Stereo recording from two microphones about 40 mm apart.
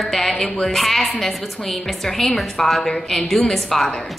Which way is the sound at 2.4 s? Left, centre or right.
Centre.